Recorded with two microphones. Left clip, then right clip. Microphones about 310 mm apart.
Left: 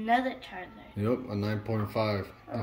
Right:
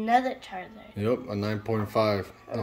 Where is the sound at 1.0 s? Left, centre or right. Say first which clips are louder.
Right 3 dB; centre.